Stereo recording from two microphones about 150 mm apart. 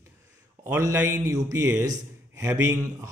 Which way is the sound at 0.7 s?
20° right (ahead or behind).